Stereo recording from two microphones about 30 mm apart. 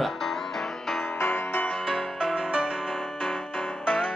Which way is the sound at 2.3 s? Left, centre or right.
Right.